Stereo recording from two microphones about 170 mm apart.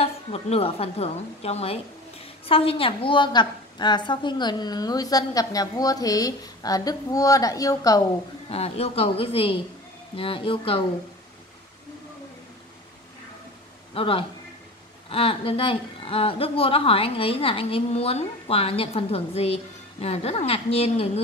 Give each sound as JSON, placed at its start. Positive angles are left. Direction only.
{"t": 0.0, "sound": "a woman's voice", "side_deg": 35}
{"t": 8.5, "sound": "a woman's voice", "side_deg": 35}
{"t": 13.9, "sound": "a woman's voice", "side_deg": 30}